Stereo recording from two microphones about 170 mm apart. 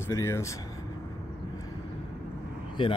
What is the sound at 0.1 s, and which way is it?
Speech, 15° left (ahead or behind).